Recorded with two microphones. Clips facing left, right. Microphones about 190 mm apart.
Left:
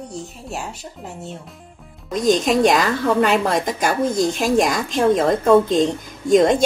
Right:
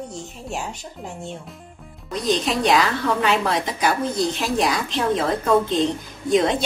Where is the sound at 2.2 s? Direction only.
45° left (ahead or behind).